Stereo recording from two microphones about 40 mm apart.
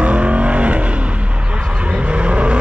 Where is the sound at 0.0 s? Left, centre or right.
Right.